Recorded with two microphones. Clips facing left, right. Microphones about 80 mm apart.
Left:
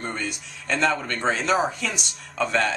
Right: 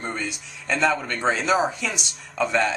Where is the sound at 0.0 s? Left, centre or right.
Centre.